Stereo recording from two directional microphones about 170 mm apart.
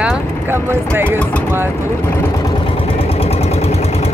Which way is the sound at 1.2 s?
5° left (ahead or behind).